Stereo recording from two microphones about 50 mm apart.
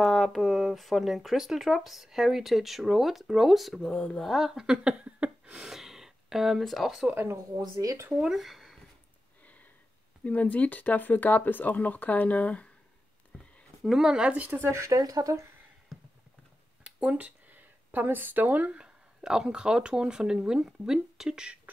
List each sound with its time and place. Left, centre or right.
0.0 s speech: centre
3.9 s speech: centre
4.2 s speech: centre
4.6 s a sound: right
5.6 s a sound: centre
6.6 s speech: centre
7.2 s speech: right
8.2 s speech: centre
10.2 s speech: left
13.8 s speech: centre
14.5 s speech: right
14.8 s speech: right
16.8 s a sound: right
18.8 s speech: centre